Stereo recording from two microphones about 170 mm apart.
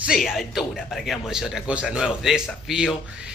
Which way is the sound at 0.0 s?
Centre (ahead or behind).